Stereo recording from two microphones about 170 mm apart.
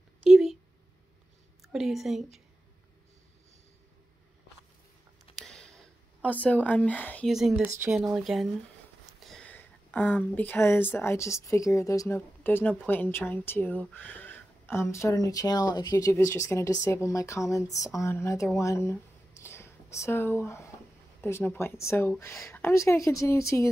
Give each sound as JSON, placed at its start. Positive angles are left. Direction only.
{"t": 0.3, "sound": "a sound", "side_deg": 0}
{"t": 1.7, "sound": "a woman's voice", "side_deg": 0}
{"t": 5.3, "sound": "a sound", "side_deg": 0}
{"t": 6.2, "sound": "speech", "side_deg": 10}
{"t": 7.2, "sound": "a woman's voice", "side_deg": 0}
{"t": 7.6, "sound": "speech", "side_deg": -15}
{"t": 8.0, "sound": "a woman's voice", "side_deg": 0}